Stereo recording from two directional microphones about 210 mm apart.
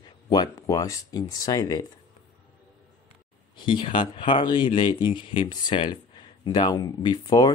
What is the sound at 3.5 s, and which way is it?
Speech, 20° left (ahead or behind).